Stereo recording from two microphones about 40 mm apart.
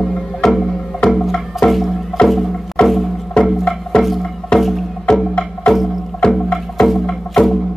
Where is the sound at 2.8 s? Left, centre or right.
Centre.